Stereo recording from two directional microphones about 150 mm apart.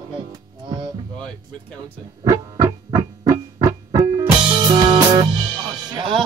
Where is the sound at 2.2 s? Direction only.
25° right (ahead or behind).